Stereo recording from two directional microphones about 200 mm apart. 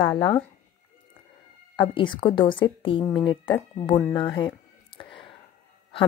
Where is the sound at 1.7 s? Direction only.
25° left (ahead or behind).